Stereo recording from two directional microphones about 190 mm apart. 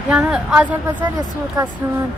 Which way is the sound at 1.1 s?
20° right (ahead or behind).